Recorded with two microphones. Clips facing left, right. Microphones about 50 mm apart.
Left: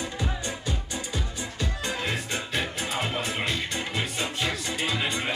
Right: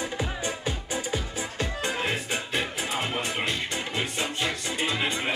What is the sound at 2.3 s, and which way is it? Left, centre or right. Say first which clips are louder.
Music: right 1 dB; centre.